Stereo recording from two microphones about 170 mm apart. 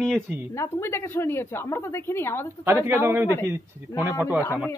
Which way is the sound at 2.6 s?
15° right (ahead or behind).